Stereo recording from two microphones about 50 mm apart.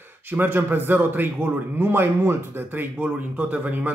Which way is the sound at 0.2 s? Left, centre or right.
Right.